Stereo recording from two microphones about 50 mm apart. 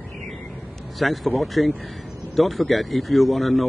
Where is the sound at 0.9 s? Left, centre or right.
Centre.